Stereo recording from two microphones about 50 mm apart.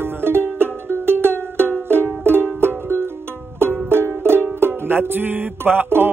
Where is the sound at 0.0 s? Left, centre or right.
Right.